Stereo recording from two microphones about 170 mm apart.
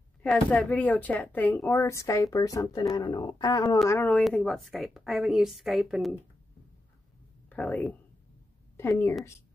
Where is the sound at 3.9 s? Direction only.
10° left (ahead or behind).